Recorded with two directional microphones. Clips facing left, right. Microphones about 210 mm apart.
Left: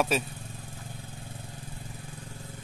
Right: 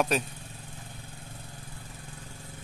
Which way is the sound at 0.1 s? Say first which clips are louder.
Even; centre (ahead or behind).